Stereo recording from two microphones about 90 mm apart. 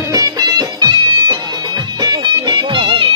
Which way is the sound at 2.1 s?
55° right (ahead or behind).